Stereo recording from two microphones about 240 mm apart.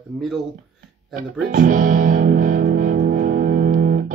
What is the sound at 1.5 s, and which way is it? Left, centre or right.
Music, right.